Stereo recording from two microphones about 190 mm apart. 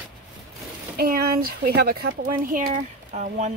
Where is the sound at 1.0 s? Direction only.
50° right (ahead or behind).